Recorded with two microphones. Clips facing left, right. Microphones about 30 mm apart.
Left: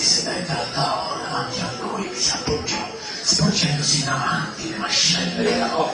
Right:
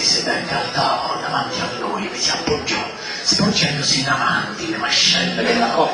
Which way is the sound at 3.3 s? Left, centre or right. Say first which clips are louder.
Right 3 dB; right.